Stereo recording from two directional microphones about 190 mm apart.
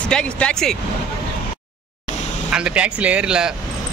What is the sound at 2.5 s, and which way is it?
Speech, 5° right (ahead or behind).